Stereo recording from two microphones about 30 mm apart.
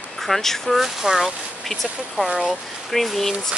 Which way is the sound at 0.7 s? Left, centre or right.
Centre.